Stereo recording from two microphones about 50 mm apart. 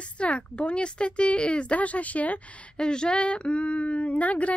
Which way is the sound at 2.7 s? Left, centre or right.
Centre.